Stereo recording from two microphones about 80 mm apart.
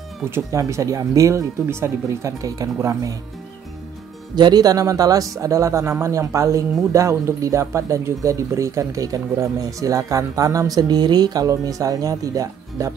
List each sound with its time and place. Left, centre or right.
0.5 s speech: right
4.4 s speech: right